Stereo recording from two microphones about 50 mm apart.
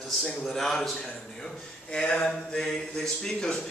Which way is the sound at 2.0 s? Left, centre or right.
Left.